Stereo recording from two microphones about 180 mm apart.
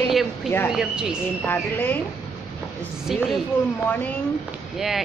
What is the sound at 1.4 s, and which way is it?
Speech, 10° left (ahead or behind).